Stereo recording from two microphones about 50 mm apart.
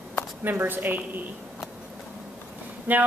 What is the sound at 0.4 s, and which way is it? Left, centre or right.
Speech, right.